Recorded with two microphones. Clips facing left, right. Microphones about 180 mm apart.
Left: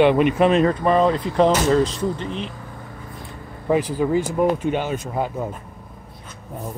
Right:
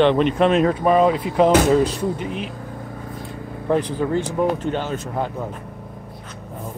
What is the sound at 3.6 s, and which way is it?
Speech, 5° left (ahead or behind).